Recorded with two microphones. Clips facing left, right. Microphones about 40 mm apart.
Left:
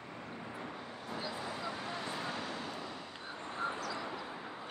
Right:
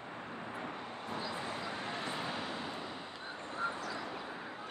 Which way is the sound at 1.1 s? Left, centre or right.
Right.